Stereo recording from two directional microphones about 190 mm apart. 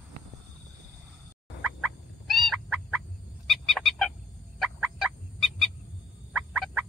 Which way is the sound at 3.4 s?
Centre (ahead or behind).